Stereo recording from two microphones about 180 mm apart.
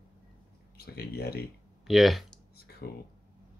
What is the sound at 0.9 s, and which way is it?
Speech, 60° left (ahead or behind).